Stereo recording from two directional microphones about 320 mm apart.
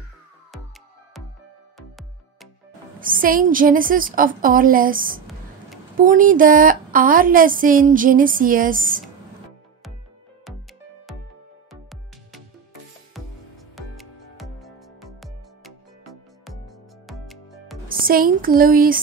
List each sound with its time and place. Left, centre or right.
3.0 s a woman's voice: right
11.7 s music: centre
13.7 s music: centre
17.8 s speech: right